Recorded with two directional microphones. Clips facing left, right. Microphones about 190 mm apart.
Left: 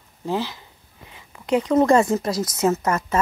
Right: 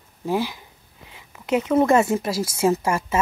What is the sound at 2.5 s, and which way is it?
Speech, 10° right (ahead or behind).